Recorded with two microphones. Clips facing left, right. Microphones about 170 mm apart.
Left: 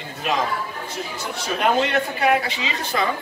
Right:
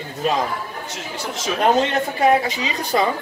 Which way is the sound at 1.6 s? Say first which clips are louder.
Right 2 dB; 40° right (ahead or behind).